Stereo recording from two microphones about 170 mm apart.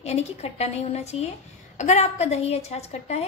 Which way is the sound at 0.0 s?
40° left (ahead or behind).